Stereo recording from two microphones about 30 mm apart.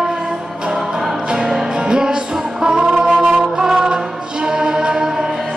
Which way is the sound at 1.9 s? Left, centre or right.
Right.